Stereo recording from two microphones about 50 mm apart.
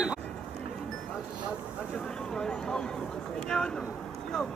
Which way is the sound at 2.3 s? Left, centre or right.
Centre.